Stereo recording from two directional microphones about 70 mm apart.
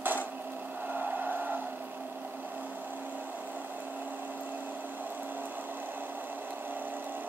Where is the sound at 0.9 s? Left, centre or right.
Right.